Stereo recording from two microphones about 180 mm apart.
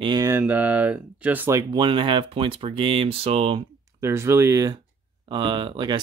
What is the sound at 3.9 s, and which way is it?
Speech, 15° right (ahead or behind).